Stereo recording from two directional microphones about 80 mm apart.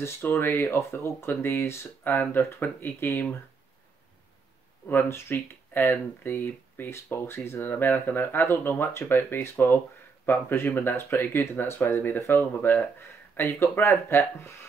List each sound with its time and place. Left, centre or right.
0.0 s speech: left
4.8 s speech: left